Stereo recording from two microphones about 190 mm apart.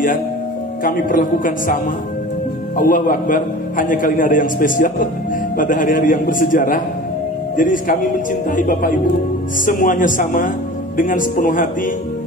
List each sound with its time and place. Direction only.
0.8 s a man's voice: 45° left (ahead or behind)
2.8 s a man's voice: 45° left (ahead or behind)